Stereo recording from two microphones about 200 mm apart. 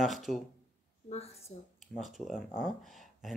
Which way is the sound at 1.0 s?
30° left (ahead or behind).